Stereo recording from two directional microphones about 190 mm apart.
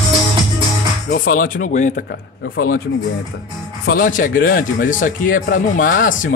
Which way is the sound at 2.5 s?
50° left (ahead or behind).